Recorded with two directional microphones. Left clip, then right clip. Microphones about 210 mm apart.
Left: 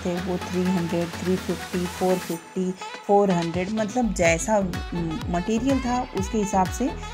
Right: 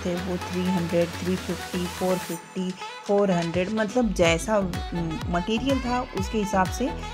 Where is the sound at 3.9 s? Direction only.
15° right (ahead or behind).